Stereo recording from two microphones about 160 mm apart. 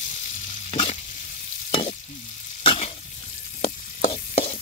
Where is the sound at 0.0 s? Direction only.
45° left (ahead or behind).